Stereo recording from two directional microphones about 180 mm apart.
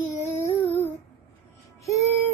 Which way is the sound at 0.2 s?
10° left (ahead or behind).